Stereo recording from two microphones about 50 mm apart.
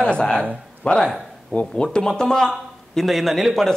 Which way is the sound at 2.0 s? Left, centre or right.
Centre.